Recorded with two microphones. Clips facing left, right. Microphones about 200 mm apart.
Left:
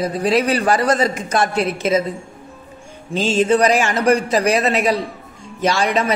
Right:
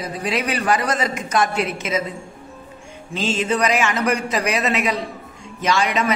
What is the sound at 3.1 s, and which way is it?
Speech, 35° left (ahead or behind).